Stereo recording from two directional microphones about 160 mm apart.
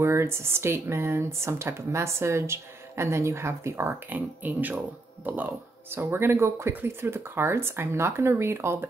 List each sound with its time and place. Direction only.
0.0 s speech: 15° right (ahead or behind)